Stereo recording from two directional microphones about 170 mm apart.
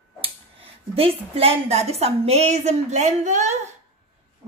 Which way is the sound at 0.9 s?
35° right (ahead or behind).